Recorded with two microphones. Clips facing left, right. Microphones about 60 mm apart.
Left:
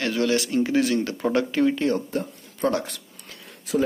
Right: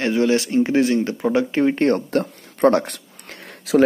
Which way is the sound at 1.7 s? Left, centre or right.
Right.